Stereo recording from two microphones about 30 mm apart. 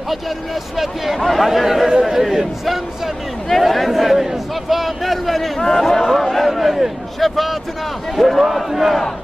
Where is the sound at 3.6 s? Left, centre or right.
Centre.